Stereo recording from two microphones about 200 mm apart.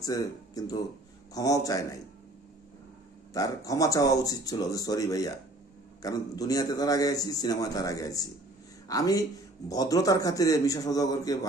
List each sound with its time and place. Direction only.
0.0 s a man's voice: 15° left (ahead or behind)
3.3 s a man's voice: 15° left (ahead or behind)